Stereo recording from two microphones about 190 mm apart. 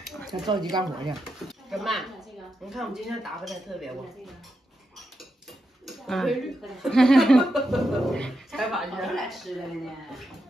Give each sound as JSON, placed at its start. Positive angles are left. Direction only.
{"t": 0.5, "sound": "speech", "side_deg": -20}
{"t": 1.2, "sound": "speech", "side_deg": 0}
{"t": 5.9, "sound": "speech", "side_deg": 0}